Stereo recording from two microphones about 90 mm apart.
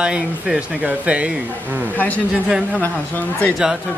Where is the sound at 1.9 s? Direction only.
20° left (ahead or behind).